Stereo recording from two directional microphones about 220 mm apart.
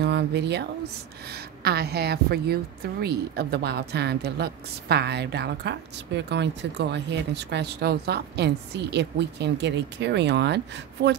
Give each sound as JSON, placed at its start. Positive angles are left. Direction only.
{"t": 0.0, "sound": "a woman's voice", "side_deg": -50}